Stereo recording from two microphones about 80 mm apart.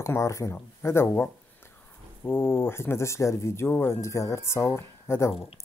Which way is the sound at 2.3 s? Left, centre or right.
Left.